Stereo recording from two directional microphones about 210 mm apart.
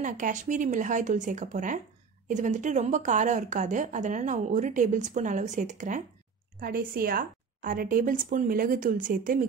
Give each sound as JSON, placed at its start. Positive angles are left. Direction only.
{"t": 0.0, "sound": "a woman's voice", "side_deg": -35}